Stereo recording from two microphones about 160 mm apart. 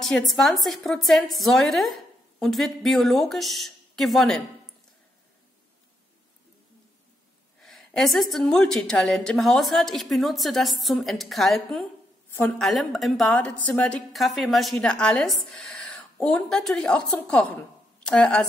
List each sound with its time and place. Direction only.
0.0 s a woman's voice: centre (ahead or behind)
7.6 s a woman's voice: centre (ahead or behind)